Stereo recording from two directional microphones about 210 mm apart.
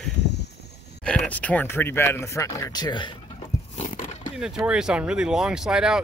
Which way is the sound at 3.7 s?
35° left (ahead or behind).